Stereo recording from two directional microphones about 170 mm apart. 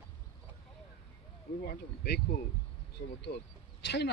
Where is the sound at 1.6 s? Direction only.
65° left (ahead or behind).